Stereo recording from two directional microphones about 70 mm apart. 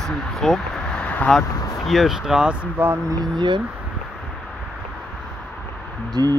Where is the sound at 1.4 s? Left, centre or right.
Centre.